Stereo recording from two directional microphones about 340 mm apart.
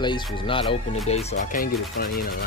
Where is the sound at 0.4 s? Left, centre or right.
Centre.